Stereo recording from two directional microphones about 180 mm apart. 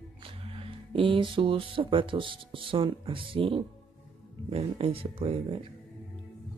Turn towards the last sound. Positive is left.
turn(degrees=-30)  # may be behind; listen again after turning